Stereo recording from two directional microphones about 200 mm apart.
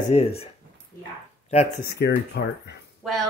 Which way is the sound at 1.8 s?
55° left (ahead or behind).